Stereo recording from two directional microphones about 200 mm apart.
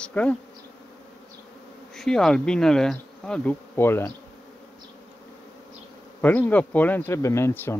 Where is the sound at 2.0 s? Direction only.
5° left (ahead or behind).